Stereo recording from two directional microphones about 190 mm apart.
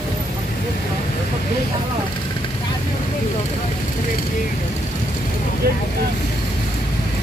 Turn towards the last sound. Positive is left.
turn(degrees=-55)  # may be behind; listen again after turning